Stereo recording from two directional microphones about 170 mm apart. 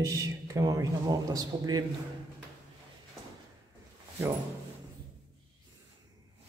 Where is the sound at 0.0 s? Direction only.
20° right (ahead or behind).